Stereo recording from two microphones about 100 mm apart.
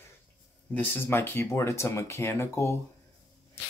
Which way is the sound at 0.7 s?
20° left (ahead or behind).